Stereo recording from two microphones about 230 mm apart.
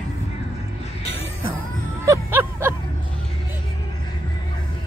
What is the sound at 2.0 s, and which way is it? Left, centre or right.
Music, centre.